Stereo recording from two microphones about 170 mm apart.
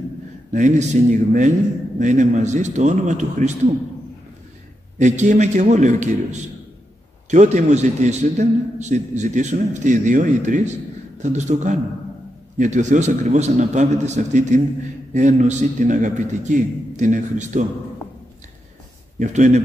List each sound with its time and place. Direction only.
0.5 s a man's voice: 45° right (ahead or behind)
4.9 s a man's voice: 45° right (ahead or behind)
7.2 s a man's voice: 45° right (ahead or behind)
19.1 s a man's voice: 45° right (ahead or behind)